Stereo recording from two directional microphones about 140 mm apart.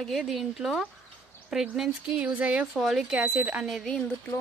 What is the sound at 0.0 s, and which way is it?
Speech, centre (ahead or behind).